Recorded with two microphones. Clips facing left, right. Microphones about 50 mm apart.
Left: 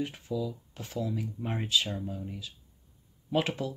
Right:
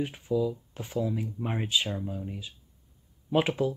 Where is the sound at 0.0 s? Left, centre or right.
Right.